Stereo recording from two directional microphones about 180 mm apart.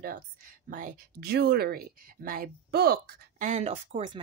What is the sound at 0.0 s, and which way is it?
Speech, 50° right (ahead or behind).